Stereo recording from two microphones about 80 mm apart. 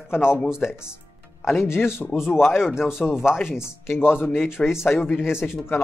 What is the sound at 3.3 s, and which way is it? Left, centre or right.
Speech, left.